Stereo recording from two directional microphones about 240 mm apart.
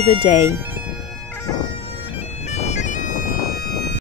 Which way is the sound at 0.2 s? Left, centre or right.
Left.